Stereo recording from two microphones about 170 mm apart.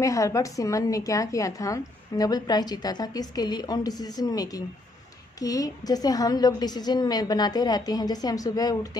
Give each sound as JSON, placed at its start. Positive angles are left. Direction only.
{"t": 0.0, "sound": "a woman's voice", "side_deg": 20}